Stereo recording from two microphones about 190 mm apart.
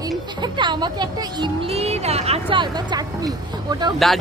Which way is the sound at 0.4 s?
25° right (ahead or behind).